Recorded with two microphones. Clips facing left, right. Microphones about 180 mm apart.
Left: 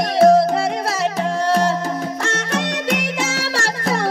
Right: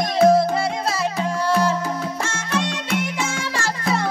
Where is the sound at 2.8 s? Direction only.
70° left (ahead or behind).